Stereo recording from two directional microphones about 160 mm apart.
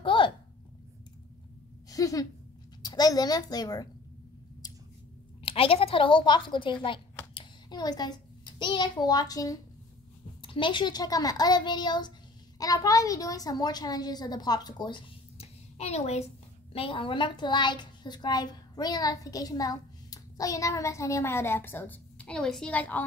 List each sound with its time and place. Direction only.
0.0 s a sound: 30° left (ahead or behind)
1.9 s a child's voice: 20° left (ahead or behind)
5.4 s a woman's voice: 35° left (ahead or behind)
10.4 s a child's voice: 30° left (ahead or behind); by 23.0 s 10° left (ahead or behind)